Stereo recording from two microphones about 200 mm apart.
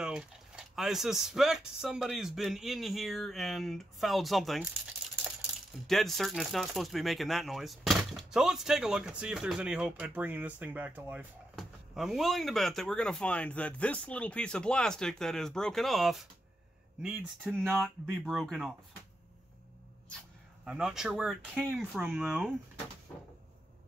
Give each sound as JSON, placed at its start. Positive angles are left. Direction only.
{"t": 0.0, "sound": "speech", "side_deg": -5}
{"t": 5.7, "sound": "speech", "side_deg": 0}
{"t": 20.6, "sound": "speech", "side_deg": 0}